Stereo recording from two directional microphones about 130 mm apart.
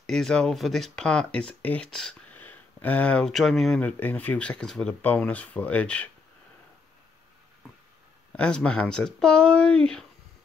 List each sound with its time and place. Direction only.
0.0 s speech: 5° left (ahead or behind)
8.4 s speech: 5° left (ahead or behind)